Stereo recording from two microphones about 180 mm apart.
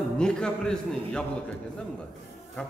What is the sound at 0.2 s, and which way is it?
A man's voice, 5° left (ahead or behind).